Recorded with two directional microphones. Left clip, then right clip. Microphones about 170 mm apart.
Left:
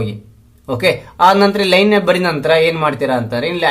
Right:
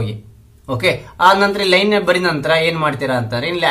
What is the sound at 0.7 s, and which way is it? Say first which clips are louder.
A man's voice: left 2 dB; 30° left (ahead or behind).